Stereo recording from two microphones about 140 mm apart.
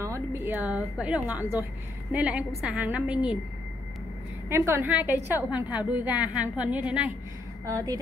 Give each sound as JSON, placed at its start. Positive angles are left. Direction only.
{"t": 0.0, "sound": "a woman's voice", "side_deg": -20}
{"t": 4.5, "sound": "a woman's voice", "side_deg": -20}
{"t": 7.6, "sound": "a woman's voice", "side_deg": -25}